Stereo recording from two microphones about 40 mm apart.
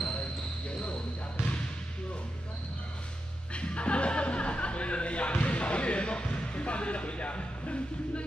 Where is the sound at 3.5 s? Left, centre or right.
Left.